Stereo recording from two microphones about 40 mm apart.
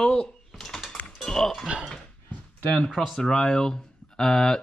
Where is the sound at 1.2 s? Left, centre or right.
Centre.